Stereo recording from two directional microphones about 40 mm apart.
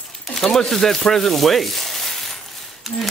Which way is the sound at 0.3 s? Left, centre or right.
Centre.